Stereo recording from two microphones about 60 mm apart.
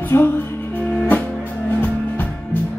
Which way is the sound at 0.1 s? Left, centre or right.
Left.